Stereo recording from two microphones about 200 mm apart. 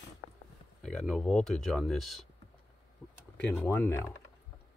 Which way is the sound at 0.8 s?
Centre (ahead or behind).